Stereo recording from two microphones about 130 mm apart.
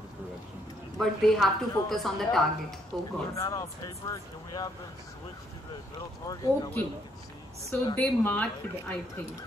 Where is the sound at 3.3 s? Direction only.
25° left (ahead or behind).